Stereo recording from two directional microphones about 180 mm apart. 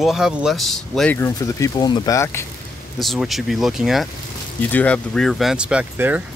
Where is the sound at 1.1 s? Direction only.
15° left (ahead or behind).